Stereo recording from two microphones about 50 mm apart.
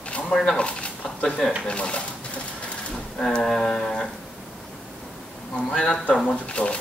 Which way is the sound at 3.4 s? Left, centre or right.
Centre.